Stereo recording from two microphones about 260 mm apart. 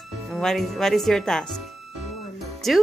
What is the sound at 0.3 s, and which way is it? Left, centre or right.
Speech, centre.